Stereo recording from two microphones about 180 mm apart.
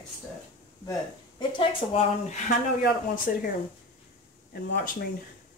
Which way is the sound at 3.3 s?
45° left (ahead or behind).